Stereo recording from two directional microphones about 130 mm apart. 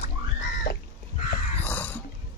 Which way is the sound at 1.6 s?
15° left (ahead or behind).